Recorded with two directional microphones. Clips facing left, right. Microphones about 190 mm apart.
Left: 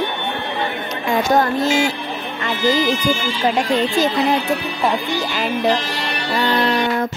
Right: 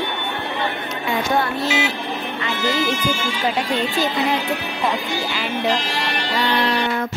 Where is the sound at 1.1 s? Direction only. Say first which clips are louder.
Left 5 dB; 45° left (ahead or behind).